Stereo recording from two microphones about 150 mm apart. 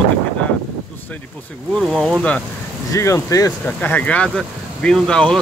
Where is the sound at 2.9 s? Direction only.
20° left (ahead or behind).